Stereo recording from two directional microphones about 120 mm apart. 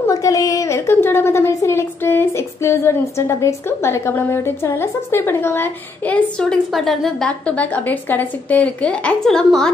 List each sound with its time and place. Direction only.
0.0 s a woman's voice: 30° left (ahead or behind); by 9.7 s 5° left (ahead or behind)